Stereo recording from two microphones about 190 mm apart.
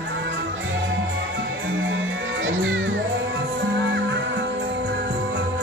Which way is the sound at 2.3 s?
80° right.